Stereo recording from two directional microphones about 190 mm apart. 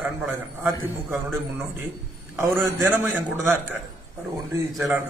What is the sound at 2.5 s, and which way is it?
Speech, 10° right (ahead or behind).